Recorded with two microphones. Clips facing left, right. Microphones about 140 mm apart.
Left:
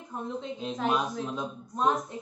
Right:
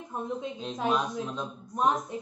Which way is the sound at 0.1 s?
15° right (ahead or behind).